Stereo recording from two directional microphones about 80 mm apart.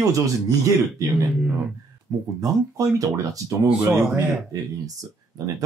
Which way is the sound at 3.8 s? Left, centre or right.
Right.